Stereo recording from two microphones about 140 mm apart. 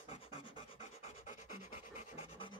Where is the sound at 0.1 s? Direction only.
40° left (ahead or behind).